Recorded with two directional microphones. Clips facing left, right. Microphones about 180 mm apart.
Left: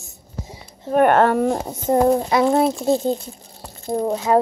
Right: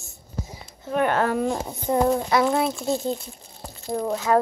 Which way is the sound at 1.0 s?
60° left (ahead or behind).